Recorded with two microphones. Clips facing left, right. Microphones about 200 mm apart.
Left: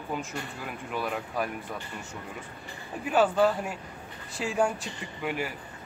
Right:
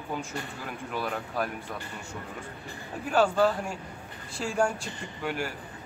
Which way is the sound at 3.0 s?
5° left (ahead or behind).